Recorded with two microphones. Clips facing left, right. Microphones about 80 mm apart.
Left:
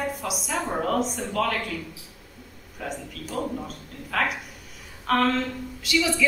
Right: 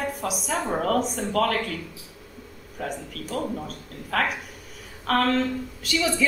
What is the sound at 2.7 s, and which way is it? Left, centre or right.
A man's voice, right.